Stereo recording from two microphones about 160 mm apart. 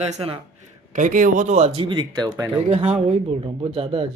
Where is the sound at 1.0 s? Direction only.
55° right (ahead or behind); by 2.4 s 25° right (ahead or behind).